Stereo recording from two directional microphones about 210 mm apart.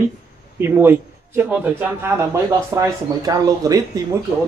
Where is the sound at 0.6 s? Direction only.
10° right (ahead or behind).